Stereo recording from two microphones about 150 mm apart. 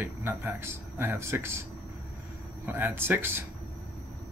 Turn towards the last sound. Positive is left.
turn(degrees=-15)  # may be behind; listen again after turning